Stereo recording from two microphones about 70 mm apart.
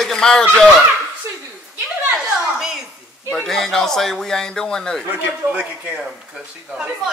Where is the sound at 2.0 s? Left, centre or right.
Centre.